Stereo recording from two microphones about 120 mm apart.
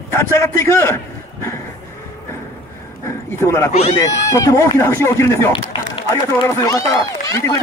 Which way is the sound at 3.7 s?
60° left (ahead or behind).